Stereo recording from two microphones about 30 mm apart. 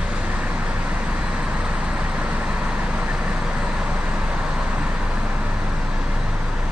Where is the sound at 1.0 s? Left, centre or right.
Right.